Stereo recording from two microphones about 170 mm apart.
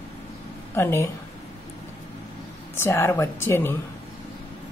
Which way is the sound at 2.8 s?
15° left (ahead or behind).